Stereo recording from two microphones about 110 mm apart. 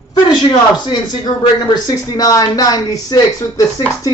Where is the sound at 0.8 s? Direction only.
40° left (ahead or behind).